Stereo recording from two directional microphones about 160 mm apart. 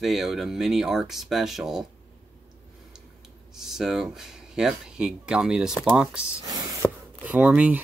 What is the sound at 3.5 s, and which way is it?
Speech, centre (ahead or behind).